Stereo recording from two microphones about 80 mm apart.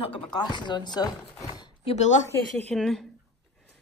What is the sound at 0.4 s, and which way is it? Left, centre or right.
Speech, left.